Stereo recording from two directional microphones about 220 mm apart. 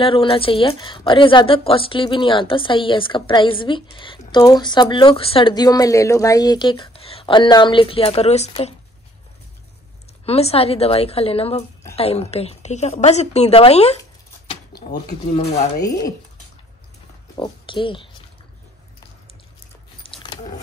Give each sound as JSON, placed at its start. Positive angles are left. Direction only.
{"t": 0.0, "sound": "speech", "side_deg": 25}
{"t": 10.2, "sound": "speech", "side_deg": 25}
{"t": 14.8, "sound": "speech", "side_deg": 45}
{"t": 17.4, "sound": "speech", "side_deg": 20}
{"t": 20.0, "sound": "a sound", "side_deg": 25}